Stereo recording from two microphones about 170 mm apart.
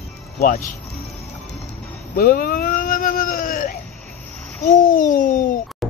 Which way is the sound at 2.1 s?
60° left (ahead or behind).